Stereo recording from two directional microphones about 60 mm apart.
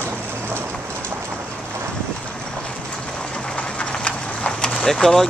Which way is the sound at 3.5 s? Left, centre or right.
Centre.